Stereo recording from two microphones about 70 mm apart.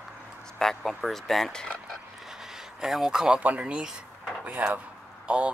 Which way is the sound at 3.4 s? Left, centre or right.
Centre.